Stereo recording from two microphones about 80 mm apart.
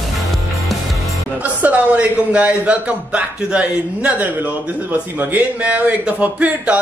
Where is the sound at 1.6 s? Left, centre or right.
Centre.